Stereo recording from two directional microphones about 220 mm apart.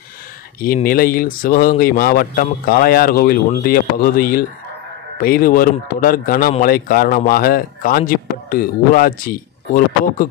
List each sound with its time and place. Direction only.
0.8 s speech: 40° left (ahead or behind)